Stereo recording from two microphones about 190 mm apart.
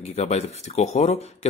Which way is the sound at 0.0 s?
35° left (ahead or behind).